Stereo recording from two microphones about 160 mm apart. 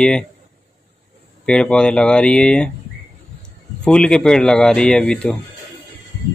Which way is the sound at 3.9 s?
5° left (ahead or behind).